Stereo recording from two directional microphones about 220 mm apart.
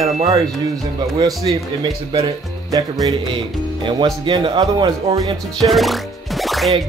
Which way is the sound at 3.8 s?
20° right (ahead or behind).